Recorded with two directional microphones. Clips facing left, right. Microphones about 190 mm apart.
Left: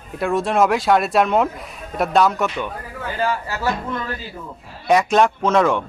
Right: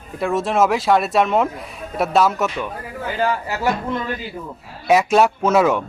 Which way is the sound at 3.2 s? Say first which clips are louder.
Right 2 dB; 20° right (ahead or behind).